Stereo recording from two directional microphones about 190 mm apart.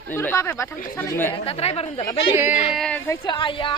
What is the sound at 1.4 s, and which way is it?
Speech, 35° left (ahead or behind).